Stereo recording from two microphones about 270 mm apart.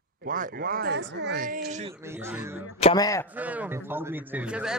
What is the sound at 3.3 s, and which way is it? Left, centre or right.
A man's voice, centre.